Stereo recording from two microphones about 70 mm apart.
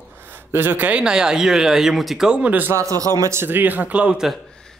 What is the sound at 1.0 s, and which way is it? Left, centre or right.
Speech, centre.